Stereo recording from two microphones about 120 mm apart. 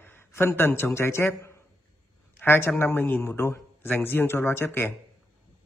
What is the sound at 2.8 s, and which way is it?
A man's voice, 15° left (ahead or behind).